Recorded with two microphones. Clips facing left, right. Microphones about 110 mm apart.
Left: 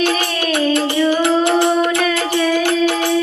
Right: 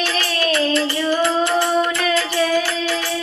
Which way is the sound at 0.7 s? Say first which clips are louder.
Left 3 dB; 60° left (ahead or behind).